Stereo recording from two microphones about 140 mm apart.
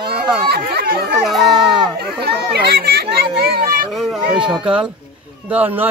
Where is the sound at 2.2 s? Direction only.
90° right.